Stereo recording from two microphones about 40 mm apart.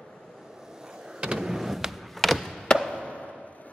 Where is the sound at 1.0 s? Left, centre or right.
Centre.